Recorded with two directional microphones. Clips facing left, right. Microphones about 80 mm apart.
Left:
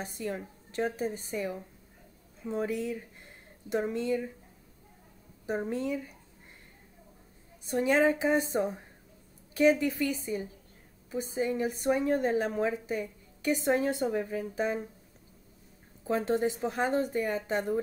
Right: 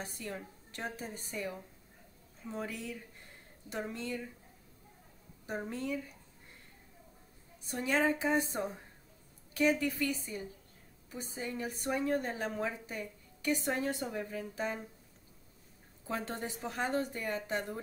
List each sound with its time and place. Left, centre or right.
0.0 s a woman's voice: left
2.5 s a woman's voice: left
5.5 s a woman's voice: left
7.7 s a woman's voice: left
11.1 s a woman's voice: left
16.1 s a woman's voice: left